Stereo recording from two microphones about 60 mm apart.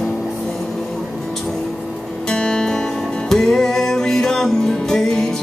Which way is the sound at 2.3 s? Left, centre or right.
Centre.